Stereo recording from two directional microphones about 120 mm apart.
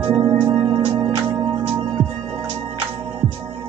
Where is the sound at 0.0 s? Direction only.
25° right (ahead or behind).